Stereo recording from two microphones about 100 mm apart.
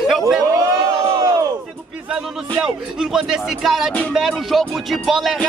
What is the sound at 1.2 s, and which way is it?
Battle cry, 40° right (ahead or behind).